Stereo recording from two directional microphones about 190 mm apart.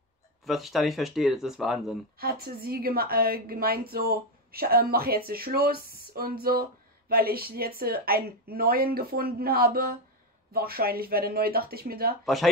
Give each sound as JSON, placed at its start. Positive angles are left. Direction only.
{"t": 0.5, "sound": "speech", "side_deg": 0}
{"t": 2.1, "sound": "a woman's voice", "side_deg": -50}